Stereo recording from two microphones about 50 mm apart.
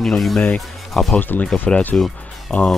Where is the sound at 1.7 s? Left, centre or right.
Centre.